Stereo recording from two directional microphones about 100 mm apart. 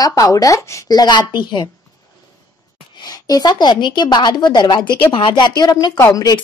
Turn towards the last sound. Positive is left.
turn(degrees=35)  # may be behind; listen again after turning